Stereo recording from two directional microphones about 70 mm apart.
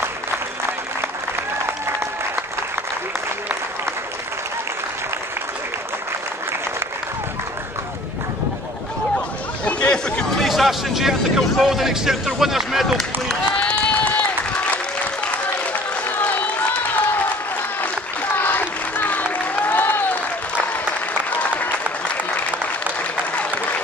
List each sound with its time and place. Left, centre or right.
9.7 s chatter: centre
10.3 s a sound: centre
11.5 s speech: centre
13.6 s run: centre
15.7 s applause: left
18.4 s applause: left